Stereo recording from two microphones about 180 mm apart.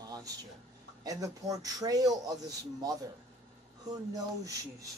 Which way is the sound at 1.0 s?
20° right (ahead or behind).